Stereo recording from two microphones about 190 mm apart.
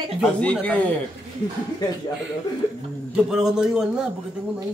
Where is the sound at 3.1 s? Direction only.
5° right (ahead or behind).